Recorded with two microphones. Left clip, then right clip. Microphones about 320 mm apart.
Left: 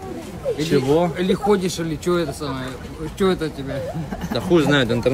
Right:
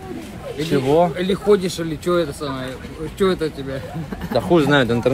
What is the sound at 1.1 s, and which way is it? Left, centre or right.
Speech, centre.